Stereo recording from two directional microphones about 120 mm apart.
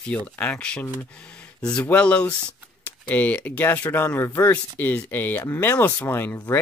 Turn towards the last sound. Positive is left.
turn(degrees=20)  # may be behind; listen again after turning